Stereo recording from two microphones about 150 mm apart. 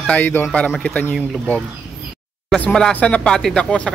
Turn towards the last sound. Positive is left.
turn(degrees=5)  # may be behind; listen again after turning